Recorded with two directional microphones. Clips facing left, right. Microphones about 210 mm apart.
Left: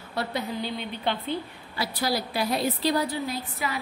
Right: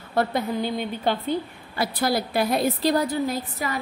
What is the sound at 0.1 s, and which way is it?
Speech, 50° right (ahead or behind).